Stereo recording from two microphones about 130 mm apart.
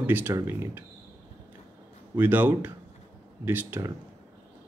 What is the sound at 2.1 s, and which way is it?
Speech, 15° right (ahead or behind).